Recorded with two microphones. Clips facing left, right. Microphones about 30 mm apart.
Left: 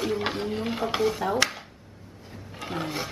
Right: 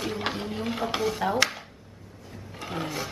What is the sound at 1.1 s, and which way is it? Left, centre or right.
Speech, centre.